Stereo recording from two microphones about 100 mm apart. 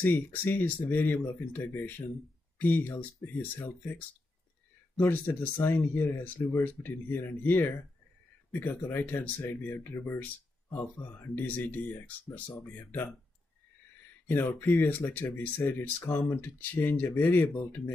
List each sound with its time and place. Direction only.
0.0 s speech: 20° left (ahead or behind)
4.9 s speech: 20° left (ahead or behind)
11.1 s speech: 15° left (ahead or behind)
14.2 s speech: 20° left (ahead or behind)